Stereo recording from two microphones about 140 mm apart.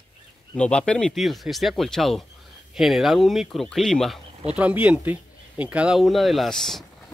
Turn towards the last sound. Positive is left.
turn(degrees=0)  # may be behind; listen again after turning